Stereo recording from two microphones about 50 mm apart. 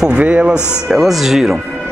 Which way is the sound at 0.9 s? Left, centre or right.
Centre.